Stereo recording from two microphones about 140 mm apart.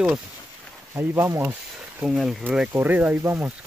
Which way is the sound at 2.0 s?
5° right (ahead or behind).